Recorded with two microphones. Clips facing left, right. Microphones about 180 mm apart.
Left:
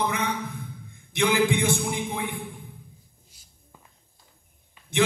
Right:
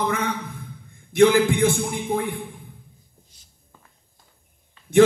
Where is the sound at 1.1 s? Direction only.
45° right (ahead or behind).